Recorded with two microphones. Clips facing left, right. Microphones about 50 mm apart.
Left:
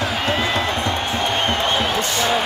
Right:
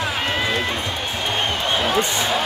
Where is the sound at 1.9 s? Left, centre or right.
Right.